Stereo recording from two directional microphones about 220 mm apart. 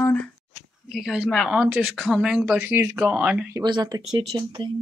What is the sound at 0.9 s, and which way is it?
Speech, centre (ahead or behind).